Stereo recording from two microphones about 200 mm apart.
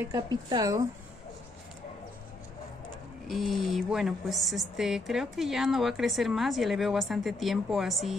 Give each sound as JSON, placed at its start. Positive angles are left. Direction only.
{"t": 0.0, "sound": "speech", "side_deg": -20}
{"t": 3.3, "sound": "speech", "side_deg": 0}